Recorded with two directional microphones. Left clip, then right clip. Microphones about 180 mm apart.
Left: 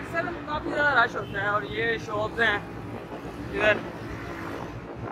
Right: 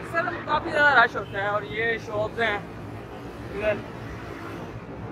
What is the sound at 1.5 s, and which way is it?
Speech, 10° right (ahead or behind).